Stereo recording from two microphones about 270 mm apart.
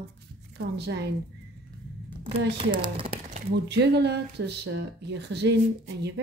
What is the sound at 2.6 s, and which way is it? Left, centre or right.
Speech, centre.